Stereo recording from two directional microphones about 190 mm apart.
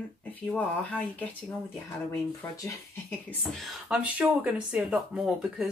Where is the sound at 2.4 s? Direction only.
15° left (ahead or behind).